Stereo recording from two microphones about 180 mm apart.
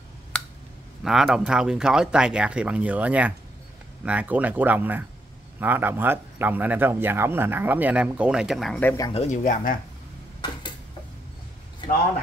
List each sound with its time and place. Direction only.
1.0 s a man's voice: centre (ahead or behind)
8.8 s speech: 20° left (ahead or behind)
9.1 s speech: 40° left (ahead or behind)